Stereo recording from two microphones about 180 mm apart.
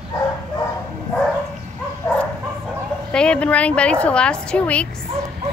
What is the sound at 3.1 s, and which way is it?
A woman's voice, 5° left (ahead or behind).